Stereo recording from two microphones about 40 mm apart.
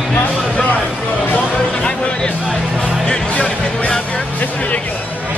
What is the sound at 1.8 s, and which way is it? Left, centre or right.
Music, left.